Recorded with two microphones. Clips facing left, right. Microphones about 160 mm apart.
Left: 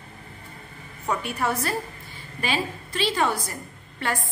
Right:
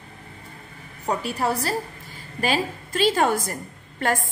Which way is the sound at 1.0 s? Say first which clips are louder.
Right 2 dB; 35° right (ahead or behind).